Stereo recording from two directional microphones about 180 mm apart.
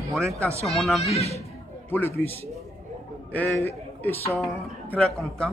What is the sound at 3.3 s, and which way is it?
A man's voice, 10° left (ahead or behind).